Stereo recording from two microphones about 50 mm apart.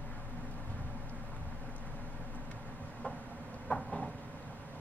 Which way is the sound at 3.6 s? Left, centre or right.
Centre.